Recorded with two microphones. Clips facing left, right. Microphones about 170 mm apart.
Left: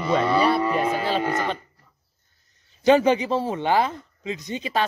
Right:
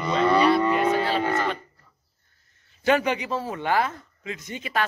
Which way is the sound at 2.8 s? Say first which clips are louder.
Left 5 dB; 25° left (ahead or behind).